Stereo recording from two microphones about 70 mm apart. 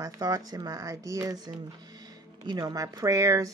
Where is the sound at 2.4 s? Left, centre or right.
Right.